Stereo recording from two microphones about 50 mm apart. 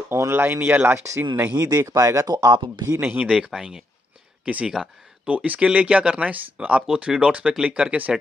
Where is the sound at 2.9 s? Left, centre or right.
Right.